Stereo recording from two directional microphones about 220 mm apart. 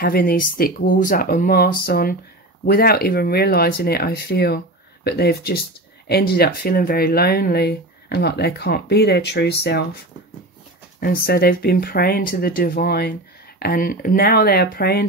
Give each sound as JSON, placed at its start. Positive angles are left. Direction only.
{"t": 0.0, "sound": "speech", "side_deg": 40}
{"t": 11.0, "sound": "speech", "side_deg": 40}